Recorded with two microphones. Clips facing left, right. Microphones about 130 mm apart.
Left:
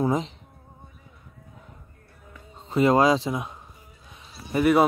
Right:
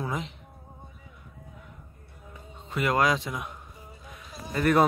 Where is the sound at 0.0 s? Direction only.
30° left (ahead or behind).